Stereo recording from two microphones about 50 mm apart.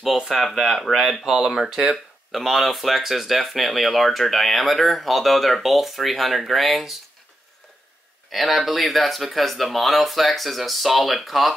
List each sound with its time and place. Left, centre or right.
0.3 s speech: centre
2.3 s speech: centre
8.3 s speech: centre